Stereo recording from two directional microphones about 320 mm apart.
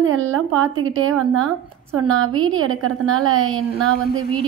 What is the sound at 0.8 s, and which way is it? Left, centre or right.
Speech, right.